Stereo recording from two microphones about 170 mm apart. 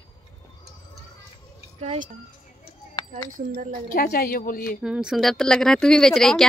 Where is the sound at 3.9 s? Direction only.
60° left (ahead or behind).